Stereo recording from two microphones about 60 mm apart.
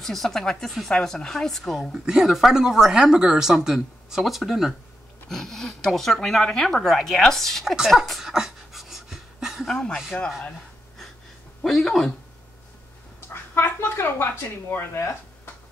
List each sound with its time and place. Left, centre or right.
0.0 s speech: centre
5.3 s speech: centre
7.6 s speech: centre
7.9 s pant: centre
9.7 s speech: centre
11.6 s speech: centre
13.2 s speech: left